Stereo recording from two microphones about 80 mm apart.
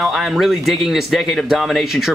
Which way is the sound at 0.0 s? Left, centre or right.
Centre.